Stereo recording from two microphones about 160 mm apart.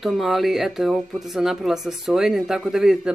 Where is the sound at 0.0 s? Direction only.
Centre (ahead or behind).